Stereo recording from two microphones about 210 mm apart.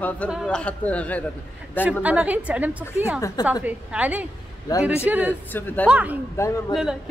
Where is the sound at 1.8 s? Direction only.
5° right (ahead or behind).